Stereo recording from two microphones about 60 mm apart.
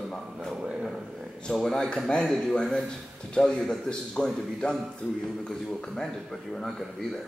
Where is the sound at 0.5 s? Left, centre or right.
Centre.